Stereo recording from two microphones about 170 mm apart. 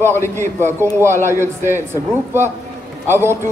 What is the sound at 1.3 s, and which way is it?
A man's voice, 15° right (ahead or behind).